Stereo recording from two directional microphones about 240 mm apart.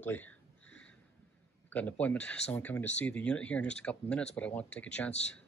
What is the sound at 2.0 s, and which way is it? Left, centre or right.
Speech, centre.